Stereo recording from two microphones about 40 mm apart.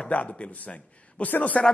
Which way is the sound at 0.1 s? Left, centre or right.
Left.